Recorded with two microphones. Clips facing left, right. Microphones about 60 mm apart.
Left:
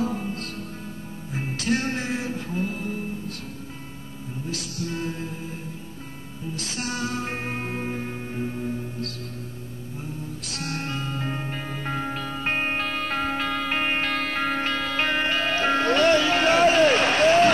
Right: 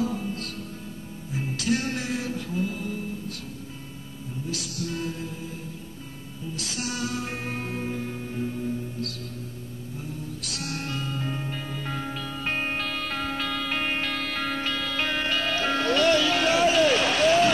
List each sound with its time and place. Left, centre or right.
0.0 s music: left
4.5 s music: left
6.5 s music: left
10.4 s music: left